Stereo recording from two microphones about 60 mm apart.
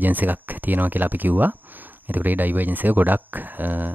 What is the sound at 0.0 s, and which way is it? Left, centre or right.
Speech, right.